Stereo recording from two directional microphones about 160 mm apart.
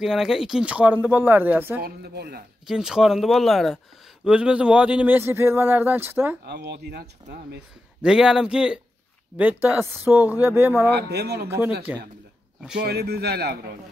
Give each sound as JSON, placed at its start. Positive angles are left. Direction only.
{"t": 0.0, "sound": "speech", "side_deg": -5}
{"t": 1.8, "sound": "speech", "side_deg": -80}
{"t": 2.7, "sound": "speech", "side_deg": -5}
{"t": 6.4, "sound": "speech", "side_deg": -90}
{"t": 8.0, "sound": "speech", "side_deg": -5}
{"t": 11.0, "sound": "speech", "side_deg": -90}
{"t": 11.4, "sound": "speech", "side_deg": -10}
{"t": 12.7, "sound": "speech", "side_deg": -90}